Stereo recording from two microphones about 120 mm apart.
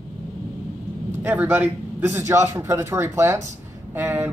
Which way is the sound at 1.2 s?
15° right (ahead or behind).